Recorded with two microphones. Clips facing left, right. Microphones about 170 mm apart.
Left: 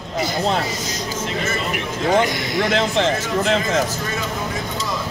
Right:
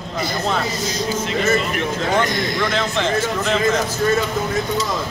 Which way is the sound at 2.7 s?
35° left (ahead or behind).